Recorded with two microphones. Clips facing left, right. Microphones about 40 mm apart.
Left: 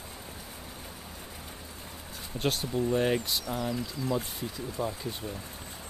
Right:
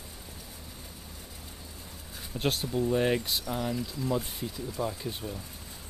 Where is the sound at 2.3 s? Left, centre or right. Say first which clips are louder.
Even; centre.